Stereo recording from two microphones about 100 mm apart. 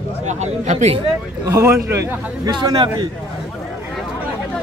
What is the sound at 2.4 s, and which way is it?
Speech, 40° right (ahead or behind).